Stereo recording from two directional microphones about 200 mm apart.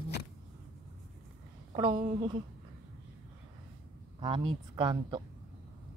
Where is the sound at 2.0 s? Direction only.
40° right (ahead or behind).